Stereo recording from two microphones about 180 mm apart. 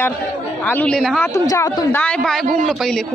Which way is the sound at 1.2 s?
15° left (ahead or behind).